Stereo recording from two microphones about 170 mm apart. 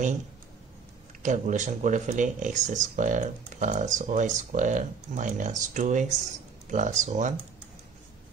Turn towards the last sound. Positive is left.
turn(degrees=-45)  # may be behind; listen again after turning